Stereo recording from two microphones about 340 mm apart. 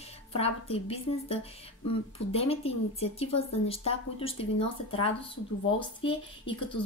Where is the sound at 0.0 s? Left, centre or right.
Centre.